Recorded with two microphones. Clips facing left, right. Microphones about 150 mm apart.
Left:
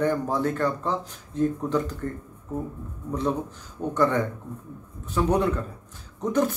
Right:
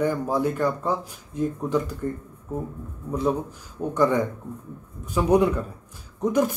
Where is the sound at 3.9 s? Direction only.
10° right (ahead or behind).